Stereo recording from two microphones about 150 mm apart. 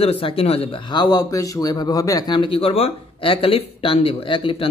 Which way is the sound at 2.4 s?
35° left (ahead or behind).